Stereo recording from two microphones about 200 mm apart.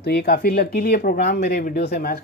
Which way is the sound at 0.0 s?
50° left (ahead or behind).